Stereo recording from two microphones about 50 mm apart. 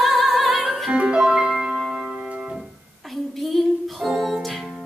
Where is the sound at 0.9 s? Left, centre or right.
Right.